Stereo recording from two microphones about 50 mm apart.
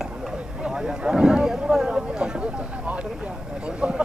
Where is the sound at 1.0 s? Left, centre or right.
Centre.